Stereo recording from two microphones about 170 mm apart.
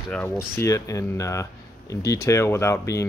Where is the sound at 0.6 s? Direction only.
20° left (ahead or behind).